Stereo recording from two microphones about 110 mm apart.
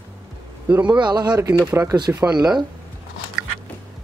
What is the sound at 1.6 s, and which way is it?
Speech, 25° right (ahead or behind).